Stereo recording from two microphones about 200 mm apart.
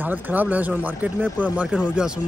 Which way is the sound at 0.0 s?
10° right (ahead or behind).